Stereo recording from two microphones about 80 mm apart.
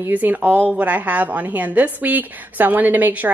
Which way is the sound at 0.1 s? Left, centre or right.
Right.